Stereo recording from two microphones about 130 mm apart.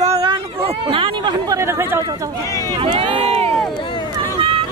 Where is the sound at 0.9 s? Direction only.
40° right (ahead or behind).